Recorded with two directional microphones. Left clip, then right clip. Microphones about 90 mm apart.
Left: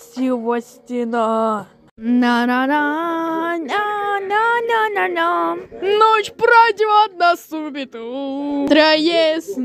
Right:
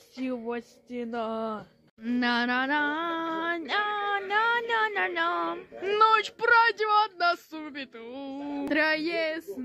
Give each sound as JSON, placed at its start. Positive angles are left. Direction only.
{"t": 0.2, "sound": "speech", "side_deg": 30}
{"t": 2.1, "sound": "a sound", "side_deg": 35}
{"t": 5.9, "sound": "speech", "side_deg": 15}